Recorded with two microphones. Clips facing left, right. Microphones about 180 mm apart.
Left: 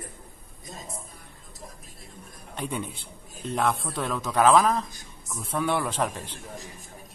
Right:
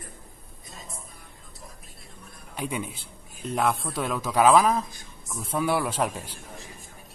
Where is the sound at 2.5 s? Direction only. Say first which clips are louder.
Right 1 dB; 5° right (ahead or behind).